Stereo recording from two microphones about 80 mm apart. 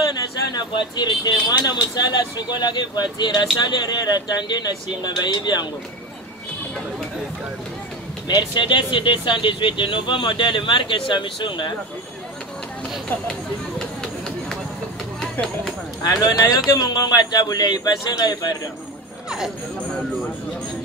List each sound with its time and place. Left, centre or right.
0.2 s speech: left
8.3 s speech: left
13.7 s run: centre
16.0 s a man's voice: left